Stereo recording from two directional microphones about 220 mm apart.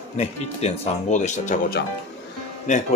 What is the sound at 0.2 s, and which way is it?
Speech, 30° left (ahead or behind).